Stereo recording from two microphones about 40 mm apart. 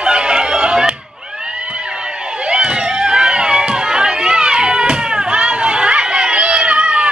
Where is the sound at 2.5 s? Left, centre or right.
Right.